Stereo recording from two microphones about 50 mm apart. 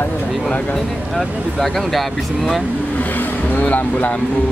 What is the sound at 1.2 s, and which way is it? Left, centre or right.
Speech, centre.